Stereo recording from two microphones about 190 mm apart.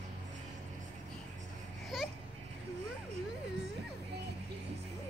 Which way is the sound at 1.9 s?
Centre (ahead or behind).